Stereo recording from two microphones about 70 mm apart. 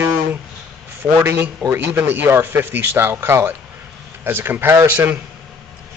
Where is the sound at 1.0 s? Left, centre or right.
Right.